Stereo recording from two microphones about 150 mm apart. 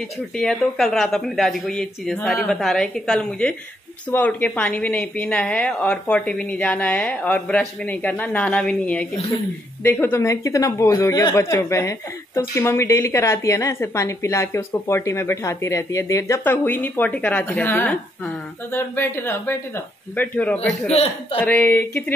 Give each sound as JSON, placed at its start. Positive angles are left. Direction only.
{"t": 0.4, "sound": "a woman's voice", "side_deg": 5}
{"t": 20.5, "sound": "a man's voice", "side_deg": 45}
{"t": 21.4, "sound": "a woman's voice", "side_deg": 10}